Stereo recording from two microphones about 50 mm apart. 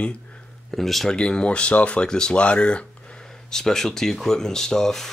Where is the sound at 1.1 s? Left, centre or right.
Centre.